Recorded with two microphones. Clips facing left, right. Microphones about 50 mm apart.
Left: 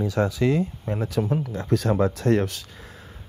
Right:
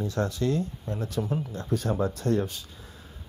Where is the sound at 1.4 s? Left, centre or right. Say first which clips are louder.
Left 5 dB; left.